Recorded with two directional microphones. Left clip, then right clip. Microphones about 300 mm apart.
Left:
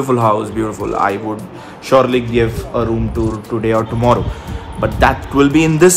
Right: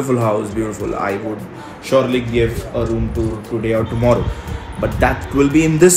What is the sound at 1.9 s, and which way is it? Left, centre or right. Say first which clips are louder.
Speech: left 4 dB; centre.